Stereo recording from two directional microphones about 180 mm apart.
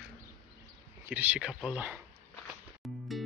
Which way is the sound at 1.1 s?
10° right (ahead or behind).